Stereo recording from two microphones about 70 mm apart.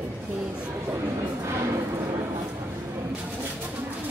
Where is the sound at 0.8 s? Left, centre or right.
Right.